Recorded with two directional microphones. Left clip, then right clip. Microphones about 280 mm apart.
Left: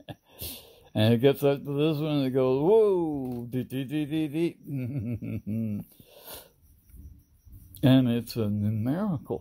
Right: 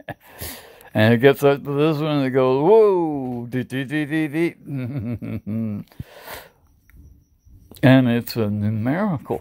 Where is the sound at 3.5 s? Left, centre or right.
Centre.